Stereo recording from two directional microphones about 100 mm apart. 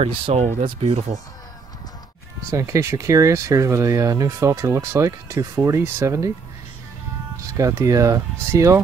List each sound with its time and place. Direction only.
0.0 s speech: 85° right
2.5 s speech: 30° right (ahead or behind)
7.5 s speech: 30° right (ahead or behind)